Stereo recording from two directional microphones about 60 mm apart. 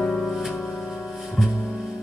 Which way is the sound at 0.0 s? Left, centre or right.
Left.